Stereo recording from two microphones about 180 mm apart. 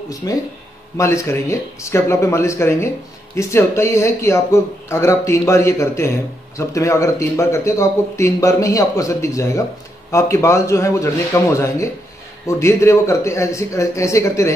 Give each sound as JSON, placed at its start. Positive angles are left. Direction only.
{"t": 0.1, "sound": "speech", "side_deg": 20}